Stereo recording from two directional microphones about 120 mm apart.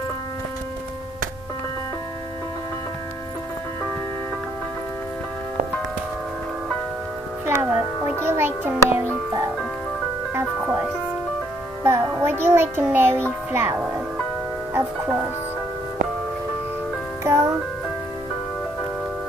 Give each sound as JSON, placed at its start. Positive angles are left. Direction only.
{"t": 7.4, "sound": "music", "side_deg": -20}
{"t": 10.3, "sound": "music", "side_deg": -15}
{"t": 13.5, "sound": "speech", "side_deg": -15}
{"t": 17.2, "sound": "music", "side_deg": -25}